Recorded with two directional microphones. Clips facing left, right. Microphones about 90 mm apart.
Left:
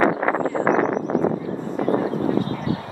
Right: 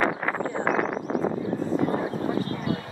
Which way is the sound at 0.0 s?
30° left (ahead or behind).